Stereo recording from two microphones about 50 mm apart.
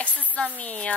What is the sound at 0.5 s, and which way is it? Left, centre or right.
Speech, left.